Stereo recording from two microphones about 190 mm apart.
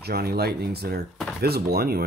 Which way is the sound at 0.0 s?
55° right (ahead or behind).